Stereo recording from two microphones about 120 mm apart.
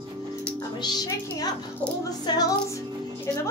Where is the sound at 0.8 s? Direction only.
35° left (ahead or behind).